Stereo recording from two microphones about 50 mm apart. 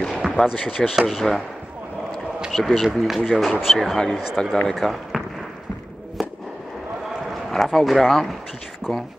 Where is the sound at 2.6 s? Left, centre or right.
Centre.